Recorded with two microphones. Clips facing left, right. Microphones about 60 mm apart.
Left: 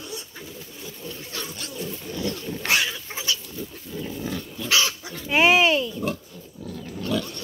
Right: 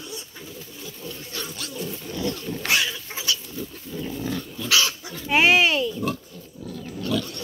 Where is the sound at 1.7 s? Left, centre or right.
Centre.